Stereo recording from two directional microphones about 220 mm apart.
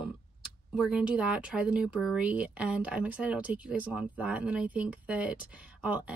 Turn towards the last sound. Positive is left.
turn(degrees=-5)  # may be behind; listen again after turning